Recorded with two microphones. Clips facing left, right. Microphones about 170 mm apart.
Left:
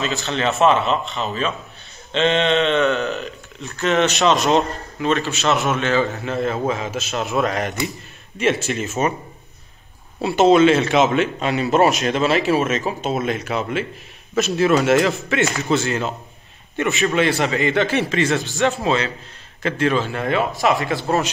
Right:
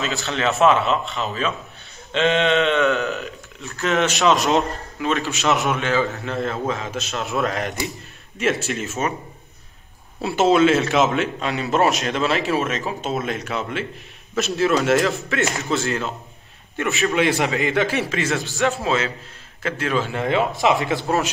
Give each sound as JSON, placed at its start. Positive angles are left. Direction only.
{"t": 0.3, "sound": "a man's voice", "side_deg": 0}
{"t": 3.6, "sound": "a man's voice", "side_deg": 0}
{"t": 5.3, "sound": "a man's voice", "side_deg": -15}
{"t": 10.2, "sound": "a man's voice", "side_deg": 0}
{"t": 17.1, "sound": "a man's voice", "side_deg": -10}
{"t": 20.1, "sound": "speech", "side_deg": -15}